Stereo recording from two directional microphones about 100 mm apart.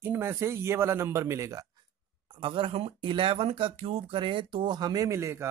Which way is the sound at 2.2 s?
60° right (ahead or behind).